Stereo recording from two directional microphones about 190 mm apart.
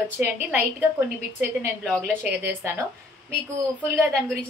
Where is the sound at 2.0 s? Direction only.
10° right (ahead or behind).